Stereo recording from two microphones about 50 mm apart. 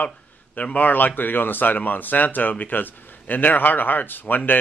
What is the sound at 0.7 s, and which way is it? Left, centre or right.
Speech, left.